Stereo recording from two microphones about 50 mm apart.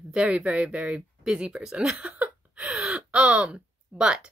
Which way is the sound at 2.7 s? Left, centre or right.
Right.